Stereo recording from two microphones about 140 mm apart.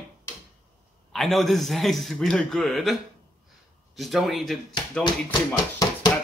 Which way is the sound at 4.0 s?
Centre (ahead or behind).